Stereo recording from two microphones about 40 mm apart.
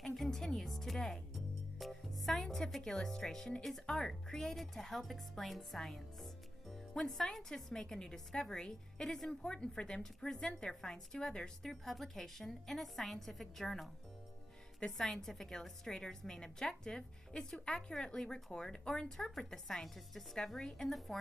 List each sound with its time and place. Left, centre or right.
0.0 s music: centre
3.8 s a woman's voice: centre
11.7 s a woman's voice: centre
15.0 s a woman's voice: centre